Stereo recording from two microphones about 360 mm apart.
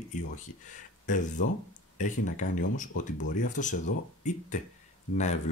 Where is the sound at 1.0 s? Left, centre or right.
Left.